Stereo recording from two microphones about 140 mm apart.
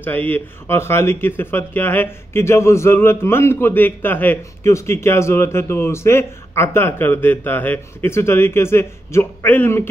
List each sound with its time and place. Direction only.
0.0 s speech: 15° left (ahead or behind)